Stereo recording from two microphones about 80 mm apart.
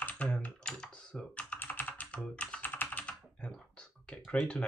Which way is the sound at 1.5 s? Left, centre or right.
Left.